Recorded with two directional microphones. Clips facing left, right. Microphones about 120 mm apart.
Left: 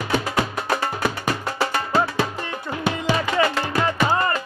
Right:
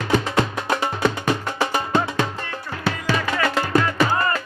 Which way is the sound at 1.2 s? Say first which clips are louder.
Right 1 dB; 20° right (ahead or behind).